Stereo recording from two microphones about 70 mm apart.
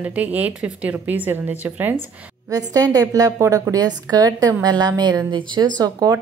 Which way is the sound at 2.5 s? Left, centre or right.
Right.